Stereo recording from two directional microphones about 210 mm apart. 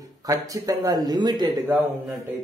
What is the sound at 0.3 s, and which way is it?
Speech, 15° right (ahead or behind).